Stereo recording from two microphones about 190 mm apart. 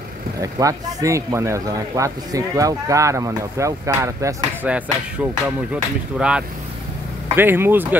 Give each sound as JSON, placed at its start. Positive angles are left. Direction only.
{"t": 0.4, "sound": "speech", "side_deg": -15}